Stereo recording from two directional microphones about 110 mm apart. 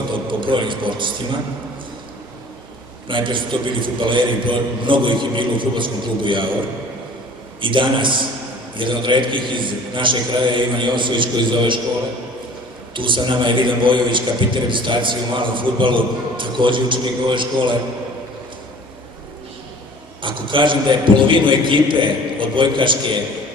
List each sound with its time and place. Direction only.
0.3 s a man's voice: 50° right (ahead or behind)
3.1 s a man's voice: 50° right (ahead or behind)
7.6 s a man's voice: 50° right (ahead or behind)
12.9 s a man's voice: 50° right (ahead or behind)
20.2 s a man's voice: 50° right (ahead or behind)